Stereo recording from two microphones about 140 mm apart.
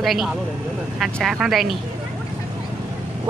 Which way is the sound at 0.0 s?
Centre (ahead or behind).